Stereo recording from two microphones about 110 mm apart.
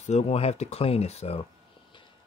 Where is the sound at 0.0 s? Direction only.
80° left.